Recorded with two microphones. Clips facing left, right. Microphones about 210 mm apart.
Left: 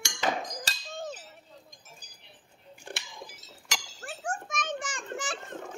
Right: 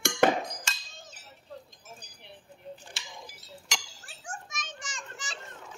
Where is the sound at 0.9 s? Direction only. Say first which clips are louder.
Left 14 dB; 60° left (ahead or behind).